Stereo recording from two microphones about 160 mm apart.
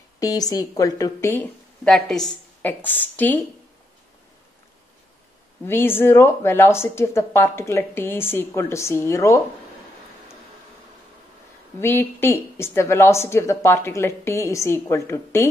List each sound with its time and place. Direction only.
0.2 s a woman's voice: 20° left (ahead or behind)
1.3 s a woman's voice: 10° left (ahead or behind)
5.7 s speech: 15° left (ahead or behind)
11.8 s speech: 15° left (ahead or behind)